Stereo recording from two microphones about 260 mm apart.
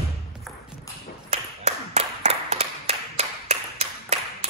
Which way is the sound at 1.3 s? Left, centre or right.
Right.